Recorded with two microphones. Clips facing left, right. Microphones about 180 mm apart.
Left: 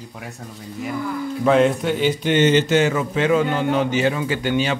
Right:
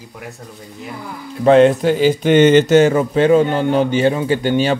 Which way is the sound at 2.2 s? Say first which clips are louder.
Right 6 dB; 55° right (ahead or behind).